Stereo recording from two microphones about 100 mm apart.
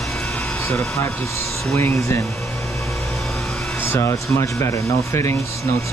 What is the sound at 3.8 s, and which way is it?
Rub, 25° left (ahead or behind).